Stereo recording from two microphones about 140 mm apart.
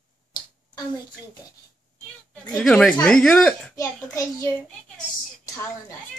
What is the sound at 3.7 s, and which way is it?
Speech, 25° left (ahead or behind).